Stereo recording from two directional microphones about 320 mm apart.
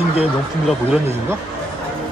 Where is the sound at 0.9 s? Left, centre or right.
Centre.